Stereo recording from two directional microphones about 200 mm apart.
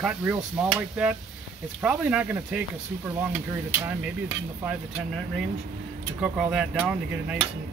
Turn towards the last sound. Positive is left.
turn(degrees=-5)  # may be behind; listen again after turning